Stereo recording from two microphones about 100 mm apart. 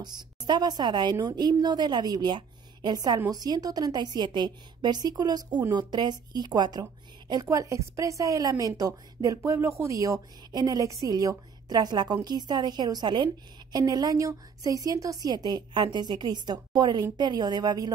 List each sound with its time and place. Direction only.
0.0 s a woman's voice: 45° right (ahead or behind)
15.2 s a woman's voice: 45° right (ahead or behind)